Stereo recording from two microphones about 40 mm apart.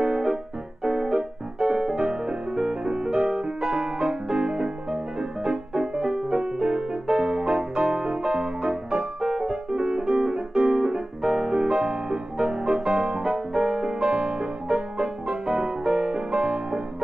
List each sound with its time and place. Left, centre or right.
0.0 s music: right